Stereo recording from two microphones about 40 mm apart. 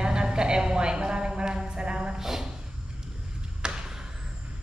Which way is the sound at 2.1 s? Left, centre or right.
Centre.